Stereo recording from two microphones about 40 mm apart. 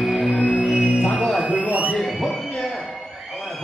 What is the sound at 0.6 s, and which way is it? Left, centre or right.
Music, right.